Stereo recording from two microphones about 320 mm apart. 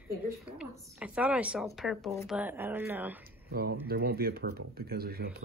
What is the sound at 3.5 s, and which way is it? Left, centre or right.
Speech, right.